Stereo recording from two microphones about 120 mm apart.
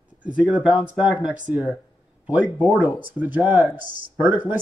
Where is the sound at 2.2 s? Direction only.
10° right (ahead or behind).